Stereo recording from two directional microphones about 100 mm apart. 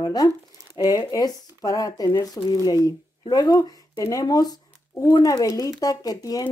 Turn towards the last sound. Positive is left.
turn(degrees=40)  # may be behind; listen again after turning